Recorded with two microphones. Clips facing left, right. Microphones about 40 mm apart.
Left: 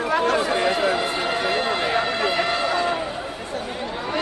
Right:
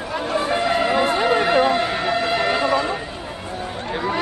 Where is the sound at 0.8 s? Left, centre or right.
Right.